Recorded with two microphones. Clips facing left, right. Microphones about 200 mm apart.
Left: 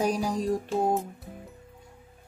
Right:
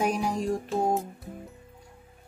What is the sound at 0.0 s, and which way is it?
Music, 35° left (ahead or behind).